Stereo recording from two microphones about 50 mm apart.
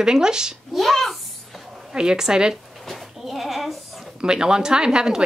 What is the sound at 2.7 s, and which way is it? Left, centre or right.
Bleat, centre.